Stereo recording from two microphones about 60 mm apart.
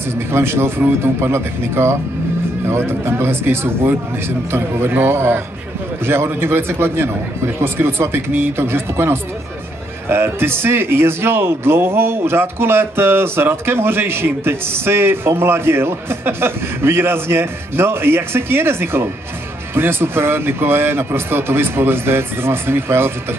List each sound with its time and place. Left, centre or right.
0.3 s a man's voice: right